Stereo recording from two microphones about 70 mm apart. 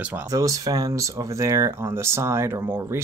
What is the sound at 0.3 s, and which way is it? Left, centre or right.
Speech, right.